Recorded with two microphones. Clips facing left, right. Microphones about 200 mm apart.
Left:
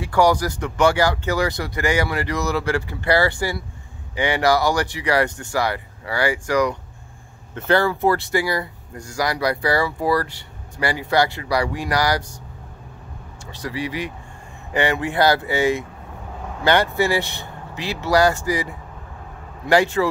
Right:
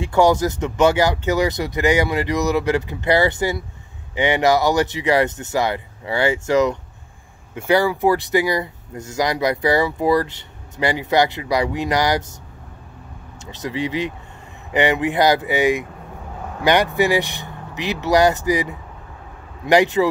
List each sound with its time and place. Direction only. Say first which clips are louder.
0.0 s speech: right 2 dB; 25° right (ahead or behind)
7.5 s speech: right 1 dB; 10° right (ahead or behind)
13.5 s speech: right 3 dB; 20° right (ahead or behind)